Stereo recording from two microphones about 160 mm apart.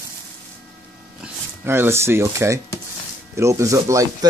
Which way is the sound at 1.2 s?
15° right (ahead or behind).